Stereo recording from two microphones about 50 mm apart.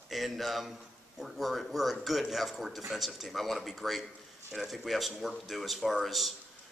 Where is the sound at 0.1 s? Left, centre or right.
Centre.